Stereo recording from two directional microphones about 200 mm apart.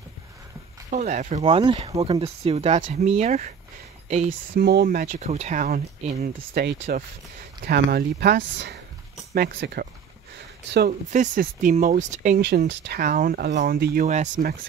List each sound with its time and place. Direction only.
0.8 s speech: 40° right (ahead or behind)
4.6 s speech: 50° right (ahead or behind)
6.5 s speech: 55° right (ahead or behind)
11.1 s speech: 40° right (ahead or behind)
12.4 s speech: 55° right (ahead or behind)
14.0 s speech: 35° right (ahead or behind)